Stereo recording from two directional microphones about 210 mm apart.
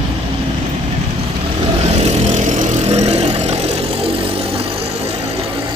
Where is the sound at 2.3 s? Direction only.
35° right (ahead or behind).